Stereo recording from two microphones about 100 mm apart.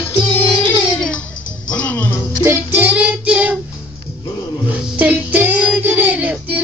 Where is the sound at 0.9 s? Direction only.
10° left (ahead or behind).